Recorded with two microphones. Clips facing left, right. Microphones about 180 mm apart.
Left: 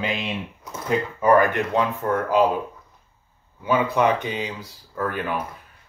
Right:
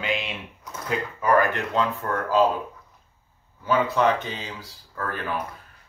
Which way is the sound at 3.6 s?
15° left (ahead or behind).